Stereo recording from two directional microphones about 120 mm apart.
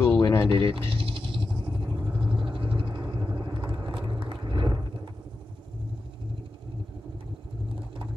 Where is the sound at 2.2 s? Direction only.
45° right (ahead or behind).